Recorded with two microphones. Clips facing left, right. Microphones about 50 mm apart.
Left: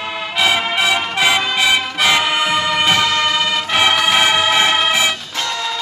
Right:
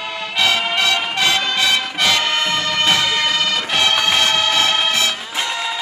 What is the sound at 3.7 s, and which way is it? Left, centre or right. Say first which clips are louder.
Music: left 4 dB; centre.